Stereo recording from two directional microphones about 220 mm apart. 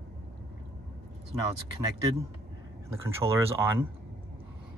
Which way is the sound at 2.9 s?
10° right (ahead or behind).